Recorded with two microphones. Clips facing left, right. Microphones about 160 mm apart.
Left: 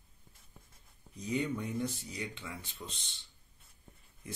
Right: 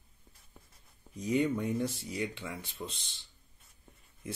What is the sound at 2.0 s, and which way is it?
Speech, 30° right (ahead or behind).